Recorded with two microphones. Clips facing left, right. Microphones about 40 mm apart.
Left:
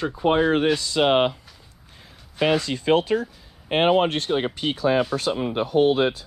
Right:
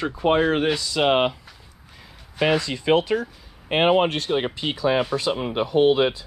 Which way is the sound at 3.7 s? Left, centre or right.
Right.